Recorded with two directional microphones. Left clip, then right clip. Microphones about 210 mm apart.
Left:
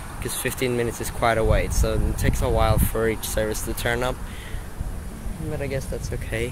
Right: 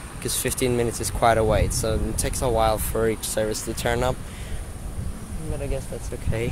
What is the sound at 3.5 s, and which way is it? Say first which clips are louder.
Speech: even; 35° right (ahead or behind).